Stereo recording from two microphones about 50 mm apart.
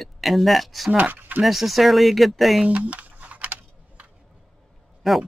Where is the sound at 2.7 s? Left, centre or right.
Right.